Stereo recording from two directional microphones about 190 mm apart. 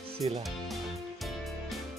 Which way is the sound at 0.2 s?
30° right (ahead or behind).